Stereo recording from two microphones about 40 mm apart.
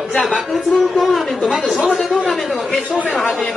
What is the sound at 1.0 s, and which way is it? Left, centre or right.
Speech, centre.